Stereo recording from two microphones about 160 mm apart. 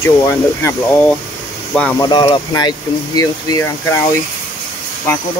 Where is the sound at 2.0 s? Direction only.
30° left (ahead or behind).